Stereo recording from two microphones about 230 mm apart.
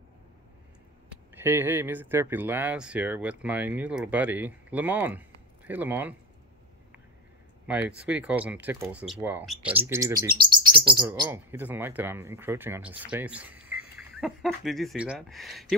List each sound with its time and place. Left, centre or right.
1.1 s speech: centre
7.6 s speech: centre
10.4 s chirp: right
11.1 s speech: centre